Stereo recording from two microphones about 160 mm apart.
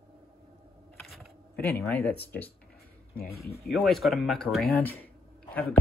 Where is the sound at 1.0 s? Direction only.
Centre (ahead or behind).